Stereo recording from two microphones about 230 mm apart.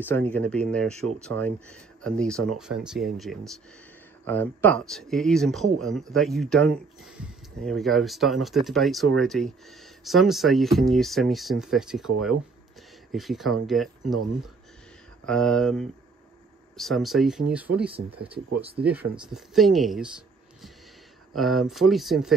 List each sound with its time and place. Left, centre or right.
0.1 s speech: centre
17.9 s speech: right
18.8 s speech: centre
21.4 s speech: centre